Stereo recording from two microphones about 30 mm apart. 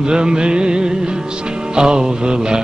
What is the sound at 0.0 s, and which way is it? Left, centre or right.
Music, right.